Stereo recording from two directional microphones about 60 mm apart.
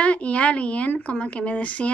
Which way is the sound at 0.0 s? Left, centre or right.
Left.